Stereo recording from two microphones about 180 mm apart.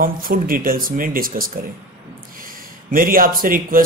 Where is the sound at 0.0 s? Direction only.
50° right (ahead or behind).